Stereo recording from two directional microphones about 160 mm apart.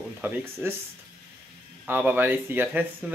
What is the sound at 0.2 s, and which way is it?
Speech, 10° right (ahead or behind).